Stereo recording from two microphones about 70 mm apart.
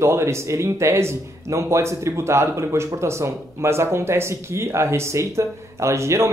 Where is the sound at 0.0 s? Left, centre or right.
Right.